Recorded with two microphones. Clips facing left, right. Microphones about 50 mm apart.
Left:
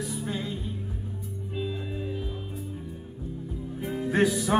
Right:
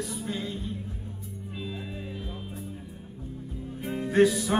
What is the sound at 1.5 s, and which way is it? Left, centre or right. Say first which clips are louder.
Music: left 5 dB; centre.